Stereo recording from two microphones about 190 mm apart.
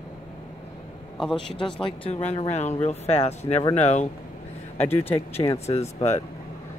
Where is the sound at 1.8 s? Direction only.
30° left (ahead or behind).